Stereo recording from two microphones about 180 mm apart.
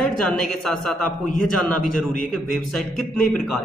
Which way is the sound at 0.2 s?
5° left (ahead or behind).